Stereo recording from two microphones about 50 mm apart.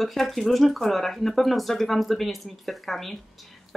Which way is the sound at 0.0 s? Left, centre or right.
Centre.